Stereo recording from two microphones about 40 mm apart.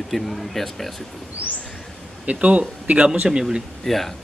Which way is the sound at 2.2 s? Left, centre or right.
Right.